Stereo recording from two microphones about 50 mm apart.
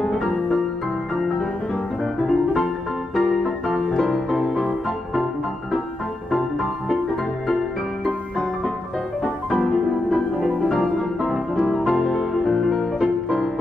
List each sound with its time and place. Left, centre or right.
0.0 s music: centre
2.2 s music: centre
9.5 s music: centre
11.1 s music: centre
11.6 s music: centre